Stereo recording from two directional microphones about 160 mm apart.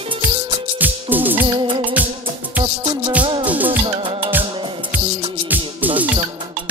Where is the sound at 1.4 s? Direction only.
35° right (ahead or behind).